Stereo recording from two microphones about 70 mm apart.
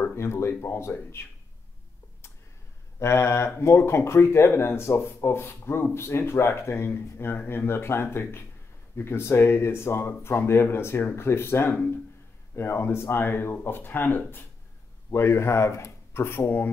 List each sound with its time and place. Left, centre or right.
0.0 s speech: left
3.0 s speech: left